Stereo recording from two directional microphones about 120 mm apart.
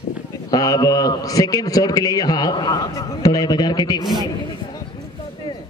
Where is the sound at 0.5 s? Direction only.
30° left (ahead or behind).